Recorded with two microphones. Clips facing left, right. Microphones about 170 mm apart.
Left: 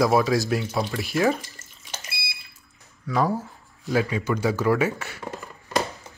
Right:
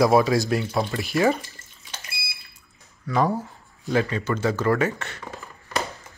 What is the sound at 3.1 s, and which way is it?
Speech, centre (ahead or behind).